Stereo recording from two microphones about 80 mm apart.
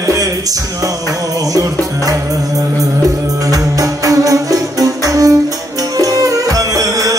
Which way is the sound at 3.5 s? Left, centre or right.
Right.